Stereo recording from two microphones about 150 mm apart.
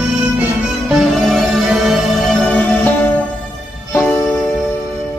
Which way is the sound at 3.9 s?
15° left (ahead or behind).